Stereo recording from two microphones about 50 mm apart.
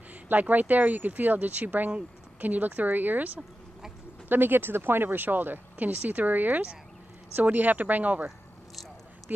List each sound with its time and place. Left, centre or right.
0.1 s speech: right
4.3 s speech: right